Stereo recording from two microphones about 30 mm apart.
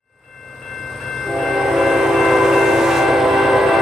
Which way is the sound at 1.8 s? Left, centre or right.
Centre.